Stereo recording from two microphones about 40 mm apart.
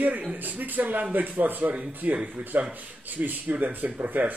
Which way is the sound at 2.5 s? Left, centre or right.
Right.